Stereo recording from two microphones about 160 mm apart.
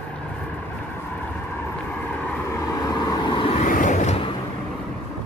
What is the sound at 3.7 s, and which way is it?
Zipper, 55° left (ahead or behind).